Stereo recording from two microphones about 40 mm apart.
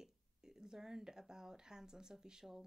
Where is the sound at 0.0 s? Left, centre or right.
Centre.